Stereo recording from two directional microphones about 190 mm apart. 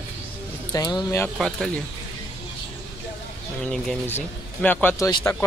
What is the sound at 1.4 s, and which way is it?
Speech, centre (ahead or behind).